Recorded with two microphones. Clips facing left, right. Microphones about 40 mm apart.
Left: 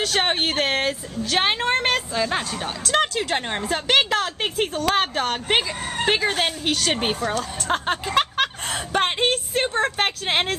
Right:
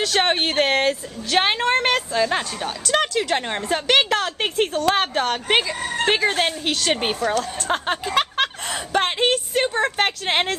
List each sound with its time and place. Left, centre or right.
0.0 s a woman's voice: centre
2.6 s a woman's voice: centre
7.6 s a sound: centre
8.9 s a woman's voice: centre